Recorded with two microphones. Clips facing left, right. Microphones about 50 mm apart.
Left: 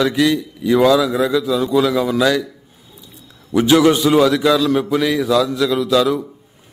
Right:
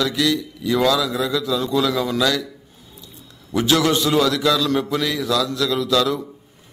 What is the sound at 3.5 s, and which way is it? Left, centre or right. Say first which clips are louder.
A man's voice: left 5 dB; centre.